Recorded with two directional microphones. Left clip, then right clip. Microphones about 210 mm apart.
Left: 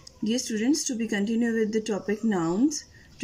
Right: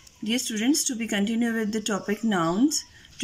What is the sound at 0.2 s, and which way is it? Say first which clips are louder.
Speech: right 1 dB; centre (ahead or behind).